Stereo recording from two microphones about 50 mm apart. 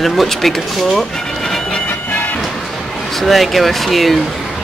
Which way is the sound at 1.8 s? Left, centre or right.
Left.